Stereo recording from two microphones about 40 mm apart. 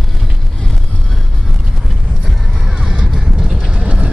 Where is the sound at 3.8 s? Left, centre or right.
Right.